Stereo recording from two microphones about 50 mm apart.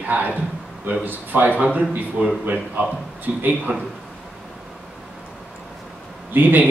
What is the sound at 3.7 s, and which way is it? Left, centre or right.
Speech, right.